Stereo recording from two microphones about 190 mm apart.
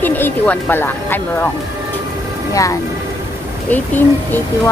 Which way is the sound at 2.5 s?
15° left (ahead or behind).